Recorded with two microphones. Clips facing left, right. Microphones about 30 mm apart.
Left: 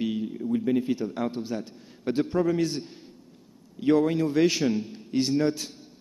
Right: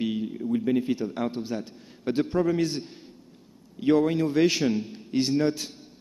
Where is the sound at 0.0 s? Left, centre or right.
Centre.